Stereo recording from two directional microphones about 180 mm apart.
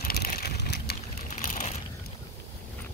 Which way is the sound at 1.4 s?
45° left (ahead or behind).